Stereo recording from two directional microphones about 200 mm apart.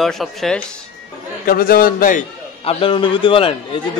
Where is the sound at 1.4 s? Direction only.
45° left (ahead or behind).